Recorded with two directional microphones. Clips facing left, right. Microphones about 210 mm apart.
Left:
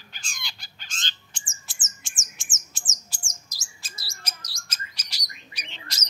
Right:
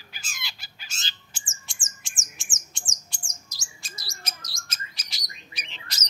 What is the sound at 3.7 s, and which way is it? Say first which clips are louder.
Chirp: right 2 dB; centre (ahead or behind).